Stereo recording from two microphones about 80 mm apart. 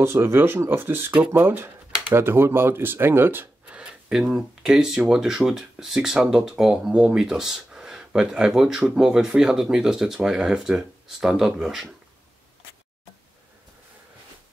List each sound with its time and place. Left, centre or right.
0.0 s speech: right
4.1 s speech: centre